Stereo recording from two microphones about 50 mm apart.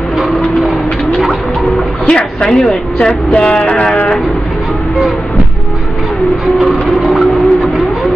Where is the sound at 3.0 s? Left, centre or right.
Centre.